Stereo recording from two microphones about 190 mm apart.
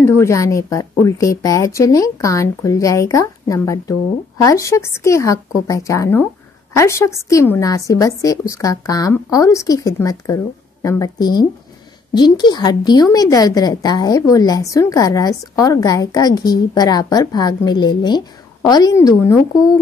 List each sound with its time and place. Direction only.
0.0 s a woman's voice: 15° left (ahead or behind)